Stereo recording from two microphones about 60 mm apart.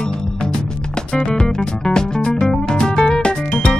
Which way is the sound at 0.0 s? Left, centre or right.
Centre.